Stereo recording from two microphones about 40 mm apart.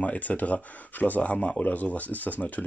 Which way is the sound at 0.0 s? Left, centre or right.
Left.